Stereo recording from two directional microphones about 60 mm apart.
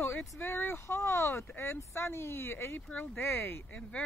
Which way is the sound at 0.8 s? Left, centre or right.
Left.